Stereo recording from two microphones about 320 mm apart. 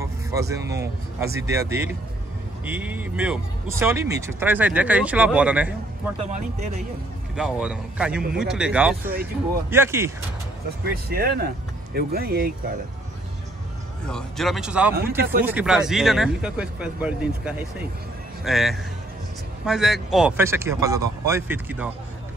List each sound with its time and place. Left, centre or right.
0.0 s music: centre
1.5 s speech: centre
6.2 s speech: right
7.3 s speech: centre
11.1 s speech: right
14.0 s speech: centre